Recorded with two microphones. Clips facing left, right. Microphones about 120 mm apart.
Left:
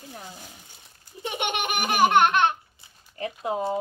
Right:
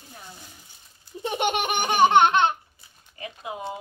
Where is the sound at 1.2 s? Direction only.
35° right (ahead or behind).